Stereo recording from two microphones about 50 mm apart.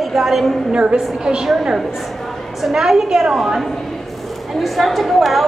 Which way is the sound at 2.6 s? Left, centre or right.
Centre.